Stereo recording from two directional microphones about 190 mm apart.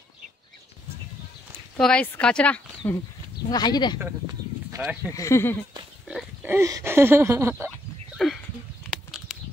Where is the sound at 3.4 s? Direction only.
20° left (ahead or behind).